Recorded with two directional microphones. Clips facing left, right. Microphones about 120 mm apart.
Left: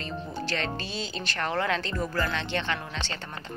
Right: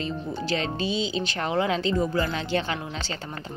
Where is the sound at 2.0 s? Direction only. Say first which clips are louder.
Right 4 dB; 25° right (ahead or behind).